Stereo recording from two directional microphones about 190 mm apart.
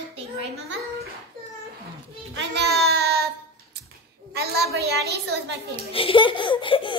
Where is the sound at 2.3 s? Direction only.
60° right (ahead or behind).